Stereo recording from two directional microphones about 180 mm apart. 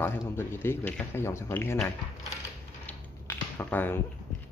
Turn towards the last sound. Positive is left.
turn(degrees=10)  # may be behind; listen again after turning